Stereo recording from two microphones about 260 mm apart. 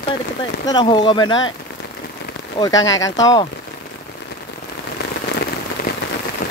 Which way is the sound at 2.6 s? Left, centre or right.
Centre.